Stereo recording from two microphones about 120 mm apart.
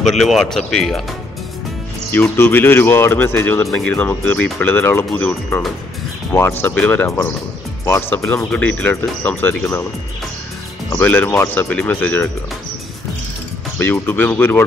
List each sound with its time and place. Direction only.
0.0 s speech: centre (ahead or behind)
2.0 s speech: 20° left (ahead or behind)
11.0 s speech: 15° left (ahead or behind)
13.7 s speech: 15° left (ahead or behind)